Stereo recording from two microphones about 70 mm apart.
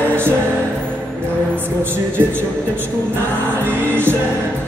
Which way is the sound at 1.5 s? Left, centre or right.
Right.